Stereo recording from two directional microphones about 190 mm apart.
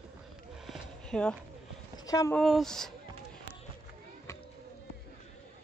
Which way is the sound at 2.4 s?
Centre (ahead or behind).